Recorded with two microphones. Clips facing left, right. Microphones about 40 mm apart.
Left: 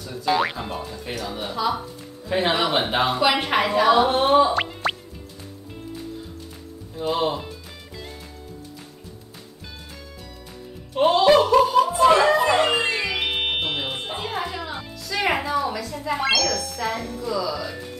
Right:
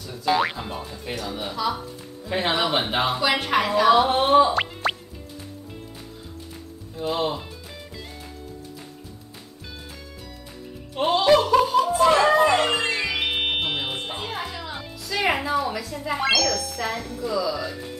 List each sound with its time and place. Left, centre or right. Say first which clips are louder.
0.0 s speech: even; centre
3.3 s a woman's voice: left 1 dB; centre
3.8 s music: even; centre
7.0 s speech: left 2 dB; centre
11.0 s speech: left 2 dB; centre
12.3 s music: even; centre